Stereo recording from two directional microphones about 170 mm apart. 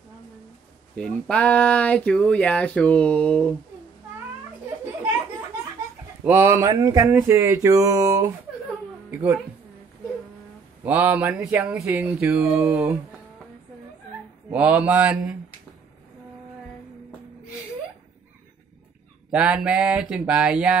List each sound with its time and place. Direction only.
0.9 s speech: 5° left (ahead or behind)
6.2 s speech: 10° right (ahead or behind)
10.8 s speech: 10° right (ahead or behind)
14.5 s speech: 10° right (ahead or behind)
19.3 s speech: 5° right (ahead or behind)